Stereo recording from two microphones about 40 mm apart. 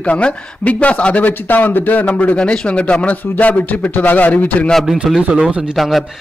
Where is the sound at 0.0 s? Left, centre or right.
Left.